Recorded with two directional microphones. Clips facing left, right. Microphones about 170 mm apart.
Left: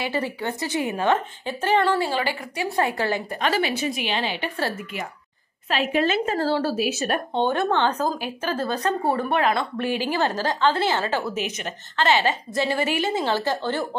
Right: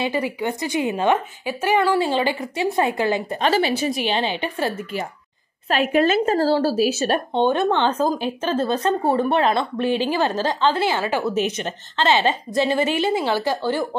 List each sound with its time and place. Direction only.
0.0 s a woman's voice: 15° right (ahead or behind)
3.3 s speech: 30° right (ahead or behind)
5.7 s speech: 50° right (ahead or behind); by 11.2 s 15° right (ahead or behind)
11.3 s speech: 30° right (ahead or behind); by 13.8 s 10° right (ahead or behind)